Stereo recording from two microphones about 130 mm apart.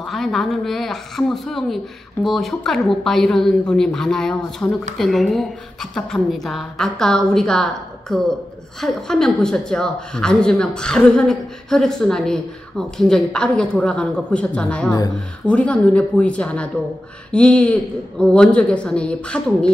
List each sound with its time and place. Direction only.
0.0 s a woman's voice: centre (ahead or behind)
14.9 s speech: 30° left (ahead or behind)
15.1 s a woman's voice: 10° left (ahead or behind)